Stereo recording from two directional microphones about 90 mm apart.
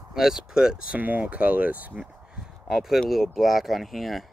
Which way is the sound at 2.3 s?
5° right (ahead or behind).